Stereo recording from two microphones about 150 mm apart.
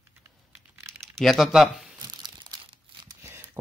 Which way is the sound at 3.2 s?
15° right (ahead or behind).